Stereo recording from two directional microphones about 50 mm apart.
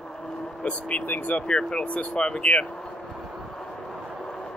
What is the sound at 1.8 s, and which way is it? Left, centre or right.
Speech, left.